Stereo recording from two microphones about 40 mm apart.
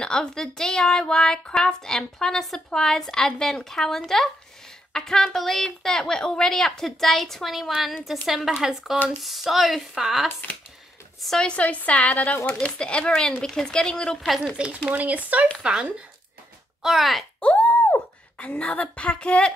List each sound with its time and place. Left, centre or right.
0.0 s a woman's voice: centre
8.6 s speech: centre
9.2 s speech: centre
11.3 s a woman's voice: left
11.6 s a woman's voice: left
12.4 s a woman's voice: left
14.9 s speech: right
15.6 s speech: right
16.8 s a woman's voice: centre
17.6 s a sound: left
18.4 s a woman's voice: left